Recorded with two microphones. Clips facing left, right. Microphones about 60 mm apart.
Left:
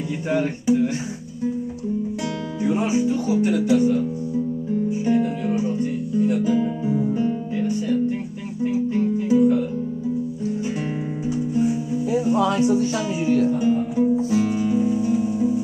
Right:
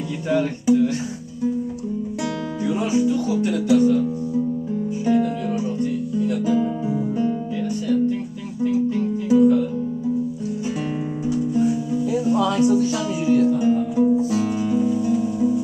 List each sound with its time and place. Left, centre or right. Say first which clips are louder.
0.3 s speech: right 2 dB; left
2.6 s speech: even; left
5.0 s music: right 3 dB; left
11.2 s music: right 1 dB; centre
14.5 s music: even; centre